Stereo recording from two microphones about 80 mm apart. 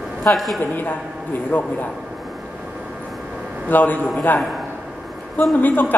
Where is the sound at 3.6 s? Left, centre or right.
Left.